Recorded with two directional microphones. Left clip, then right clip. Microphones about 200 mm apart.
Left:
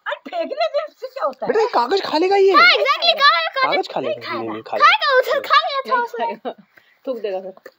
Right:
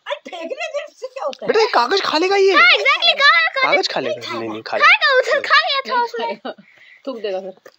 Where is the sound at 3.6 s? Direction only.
5° right (ahead or behind).